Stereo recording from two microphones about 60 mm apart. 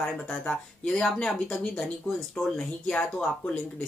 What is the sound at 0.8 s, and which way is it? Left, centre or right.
Speech, centre.